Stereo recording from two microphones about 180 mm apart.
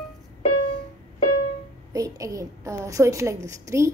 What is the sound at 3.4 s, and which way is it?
Speech, 15° right (ahead or behind).